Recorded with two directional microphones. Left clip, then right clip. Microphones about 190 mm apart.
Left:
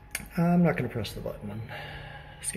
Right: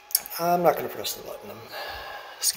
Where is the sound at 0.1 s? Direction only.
20° right (ahead or behind).